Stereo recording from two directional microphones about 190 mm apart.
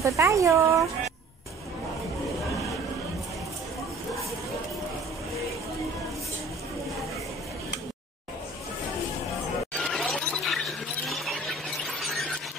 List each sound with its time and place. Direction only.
0.0 s speech: 15° right (ahead or behind)
9.8 s a sound: centre (ahead or behind)
11.8 s squeal: centre (ahead or behind)